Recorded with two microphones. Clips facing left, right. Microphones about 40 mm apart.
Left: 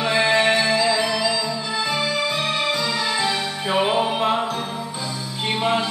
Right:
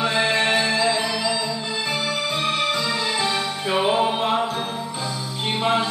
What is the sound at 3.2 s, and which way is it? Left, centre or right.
Music, left.